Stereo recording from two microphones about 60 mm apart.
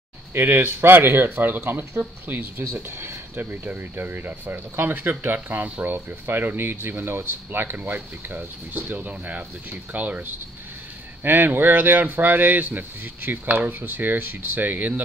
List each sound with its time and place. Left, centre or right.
0.3 s speech: right